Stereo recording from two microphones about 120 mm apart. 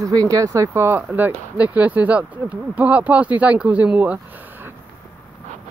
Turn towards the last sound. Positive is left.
turn(degrees=-15)  # may be behind; listen again after turning